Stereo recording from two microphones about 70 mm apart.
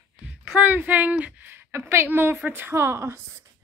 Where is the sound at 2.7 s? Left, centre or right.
Right.